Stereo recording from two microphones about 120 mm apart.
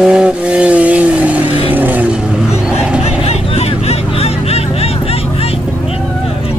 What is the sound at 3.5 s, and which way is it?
Vehicle, 60° left (ahead or behind).